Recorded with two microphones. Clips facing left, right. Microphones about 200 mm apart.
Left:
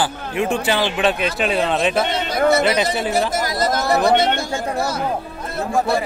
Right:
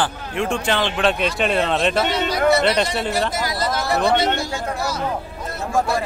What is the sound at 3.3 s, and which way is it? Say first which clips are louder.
Speech: left 3 dB; 45° left (ahead or behind).